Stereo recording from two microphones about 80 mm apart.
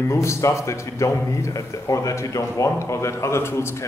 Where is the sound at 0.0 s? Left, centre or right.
Left.